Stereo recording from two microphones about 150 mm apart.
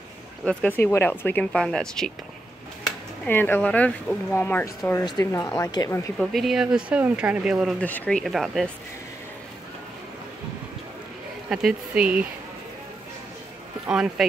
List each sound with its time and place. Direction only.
0.5 s speech: 10° left (ahead or behind)
3.3 s speech: 15° left (ahead or behind)
6.1 s speech: centre (ahead or behind)
7.8 s speech: 10° left (ahead or behind)
11.4 s speech: 5° right (ahead or behind)
13.8 s speech: 5° right (ahead or behind)